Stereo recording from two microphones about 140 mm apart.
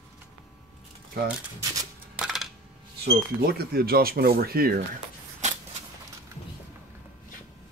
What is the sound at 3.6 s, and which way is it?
Speech, 90° right.